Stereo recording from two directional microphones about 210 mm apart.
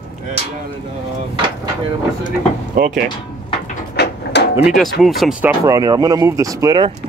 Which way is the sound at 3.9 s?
55° left (ahead or behind).